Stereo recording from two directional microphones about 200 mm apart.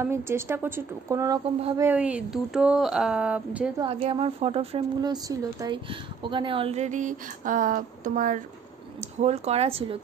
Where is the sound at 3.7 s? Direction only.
25° right (ahead or behind).